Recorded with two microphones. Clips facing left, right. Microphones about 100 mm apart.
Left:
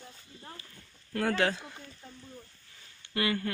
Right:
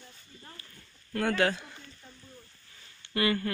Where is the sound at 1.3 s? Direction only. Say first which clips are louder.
Right 1 dB; 25° left (ahead or behind).